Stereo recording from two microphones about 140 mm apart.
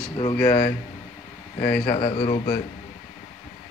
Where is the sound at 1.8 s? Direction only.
40° left (ahead or behind).